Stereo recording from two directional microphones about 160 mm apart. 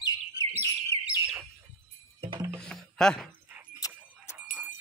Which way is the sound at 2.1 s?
30° right (ahead or behind).